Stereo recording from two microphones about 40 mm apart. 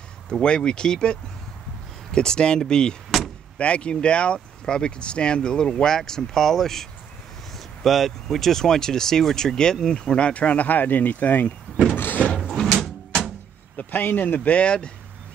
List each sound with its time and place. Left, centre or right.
0.3 s speech: left
2.1 s speech: left
12.4 s drawer open or close: centre
12.8 s a sound: centre
13.7 s speech: left
14.5 s speech: left